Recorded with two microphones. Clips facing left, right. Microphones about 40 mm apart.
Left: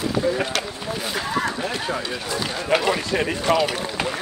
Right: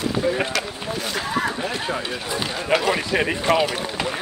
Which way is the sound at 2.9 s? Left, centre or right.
Centre.